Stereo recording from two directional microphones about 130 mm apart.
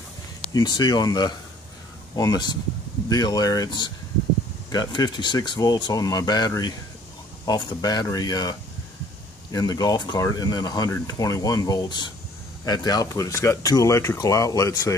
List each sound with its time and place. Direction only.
0.5 s speech: 35° left (ahead or behind)